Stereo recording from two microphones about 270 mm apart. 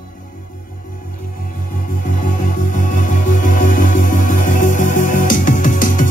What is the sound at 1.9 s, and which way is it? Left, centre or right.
Music, left.